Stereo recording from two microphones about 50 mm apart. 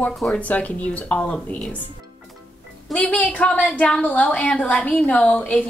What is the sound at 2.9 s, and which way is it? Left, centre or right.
A woman's voice, left.